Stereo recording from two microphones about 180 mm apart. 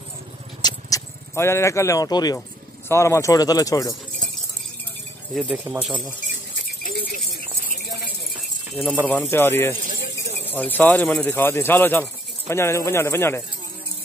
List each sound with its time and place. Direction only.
0.6 s vehicle: 20° left (ahead or behind)
2.9 s speech: 15° left (ahead or behind)
5.3 s speech: centre (ahead or behind)
6.8 s a sound: 60° left (ahead or behind)
8.7 s a man's voice: 10° left (ahead or behind)